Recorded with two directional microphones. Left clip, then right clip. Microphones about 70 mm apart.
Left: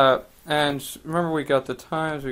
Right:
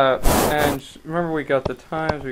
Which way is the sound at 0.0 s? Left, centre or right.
Left.